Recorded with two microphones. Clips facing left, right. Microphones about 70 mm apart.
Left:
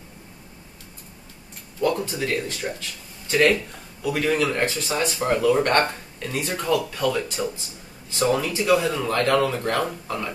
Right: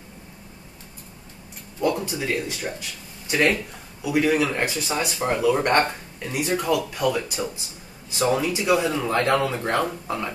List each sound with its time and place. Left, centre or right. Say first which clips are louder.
1.8 s speech: left 1 dB; centre